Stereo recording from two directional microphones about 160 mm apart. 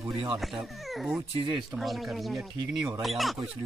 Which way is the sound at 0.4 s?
Centre (ahead or behind).